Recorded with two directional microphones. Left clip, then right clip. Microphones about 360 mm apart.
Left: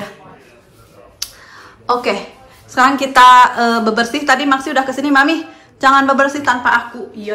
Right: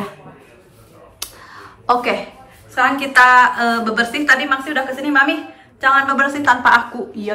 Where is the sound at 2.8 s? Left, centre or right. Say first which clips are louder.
Left 3 dB; centre.